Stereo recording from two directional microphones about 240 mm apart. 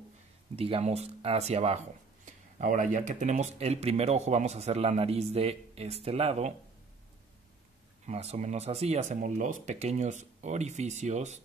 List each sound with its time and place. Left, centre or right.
0.6 s speech: right
8.0 s speech: right